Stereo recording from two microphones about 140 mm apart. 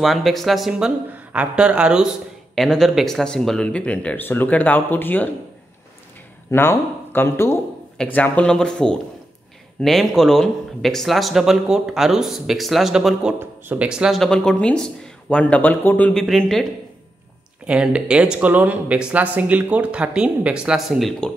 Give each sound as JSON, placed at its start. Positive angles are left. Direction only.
{"t": 0.0, "sound": "speech", "side_deg": 0}
{"t": 6.5, "sound": "speech", "side_deg": 15}
{"t": 17.6, "sound": "speech", "side_deg": -5}